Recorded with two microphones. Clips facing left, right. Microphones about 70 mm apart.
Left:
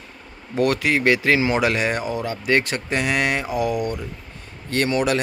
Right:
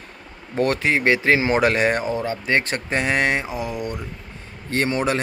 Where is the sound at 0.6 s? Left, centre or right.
Right.